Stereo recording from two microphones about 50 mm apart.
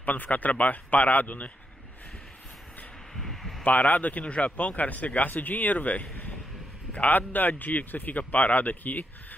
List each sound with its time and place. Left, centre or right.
0.0 s speech: left
3.2 s a sound: centre
3.6 s speech: left